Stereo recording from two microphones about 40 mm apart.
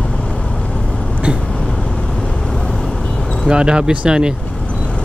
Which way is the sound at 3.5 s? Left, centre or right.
Right.